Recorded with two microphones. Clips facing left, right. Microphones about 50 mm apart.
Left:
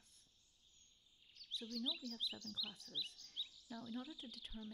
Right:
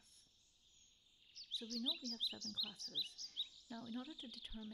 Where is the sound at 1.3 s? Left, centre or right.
Centre.